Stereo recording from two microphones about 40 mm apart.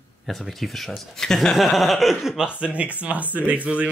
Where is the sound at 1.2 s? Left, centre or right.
Centre.